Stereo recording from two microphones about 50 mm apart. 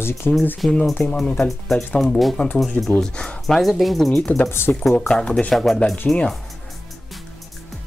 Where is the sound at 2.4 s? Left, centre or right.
Left.